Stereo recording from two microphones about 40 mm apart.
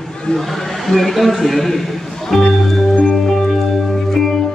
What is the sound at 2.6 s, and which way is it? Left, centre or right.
Music, centre.